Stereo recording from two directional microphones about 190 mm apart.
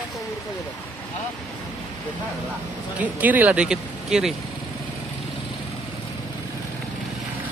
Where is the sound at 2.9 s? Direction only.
10° right (ahead or behind).